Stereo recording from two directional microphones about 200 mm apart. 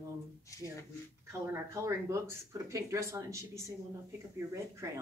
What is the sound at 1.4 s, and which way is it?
Speech, 15° right (ahead or behind).